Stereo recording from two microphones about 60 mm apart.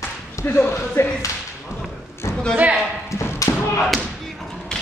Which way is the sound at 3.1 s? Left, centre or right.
Left.